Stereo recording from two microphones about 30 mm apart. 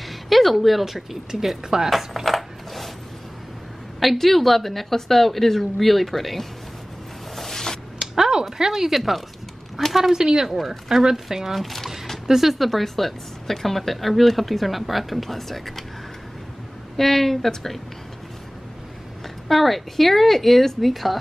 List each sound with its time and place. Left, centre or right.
0.3 s speech: centre
1.5 s dishes: centre
4.0 s speech: centre
7.3 s a sound: centre
8.0 s a sound: centre
8.5 s speech: centre
10.1 s speech: centre
11.5 s speech: centre
12.3 s speech: centre
12.5 s speech: centre
16.9 s speech: centre
19.4 s speech: centre